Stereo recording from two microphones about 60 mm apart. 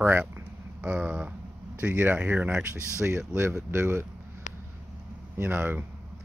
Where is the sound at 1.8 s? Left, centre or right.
Right.